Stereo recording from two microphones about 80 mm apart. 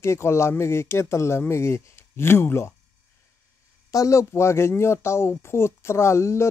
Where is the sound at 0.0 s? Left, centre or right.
Left.